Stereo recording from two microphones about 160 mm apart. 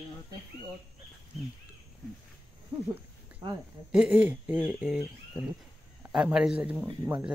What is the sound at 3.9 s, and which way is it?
Speech, 5° right (ahead or behind).